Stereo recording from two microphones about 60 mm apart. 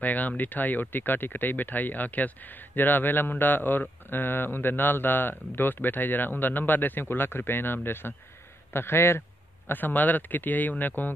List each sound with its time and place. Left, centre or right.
0.0 s a sound: left
0.4 s a man's voice: left
9.7 s speech: left